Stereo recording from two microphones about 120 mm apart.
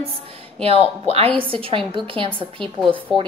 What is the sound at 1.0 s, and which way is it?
A woman's voice, 55° right (ahead or behind).